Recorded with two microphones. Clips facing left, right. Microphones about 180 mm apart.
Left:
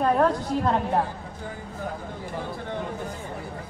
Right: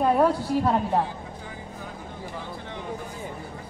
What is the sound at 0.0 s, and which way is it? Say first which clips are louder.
A woman's voice: right 1 dB; 10° right (ahead or behind).